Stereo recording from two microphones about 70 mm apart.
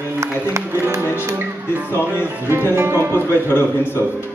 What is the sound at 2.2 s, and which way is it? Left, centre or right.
Music, right.